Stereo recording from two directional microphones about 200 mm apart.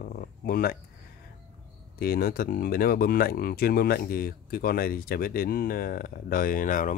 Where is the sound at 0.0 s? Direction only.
45° left (ahead or behind).